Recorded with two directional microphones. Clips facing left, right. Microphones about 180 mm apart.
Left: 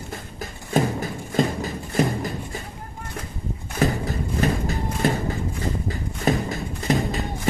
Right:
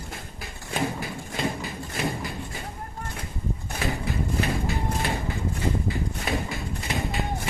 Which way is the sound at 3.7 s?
45° left (ahead or behind).